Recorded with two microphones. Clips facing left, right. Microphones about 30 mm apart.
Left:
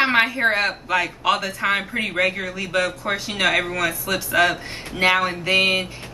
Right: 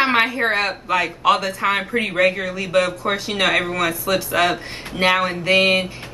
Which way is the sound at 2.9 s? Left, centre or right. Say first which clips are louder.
Right 3 dB; centre.